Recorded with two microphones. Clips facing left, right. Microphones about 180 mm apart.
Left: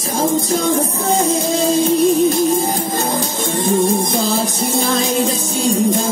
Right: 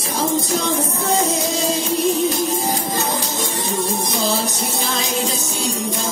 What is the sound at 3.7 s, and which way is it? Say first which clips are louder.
Music: left 9 dB; 50° left (ahead or behind).